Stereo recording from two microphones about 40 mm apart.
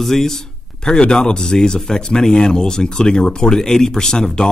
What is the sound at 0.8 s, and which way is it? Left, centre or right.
Speech, left.